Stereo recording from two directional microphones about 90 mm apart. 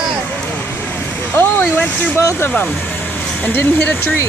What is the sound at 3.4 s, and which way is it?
Speech, 20° left (ahead or behind).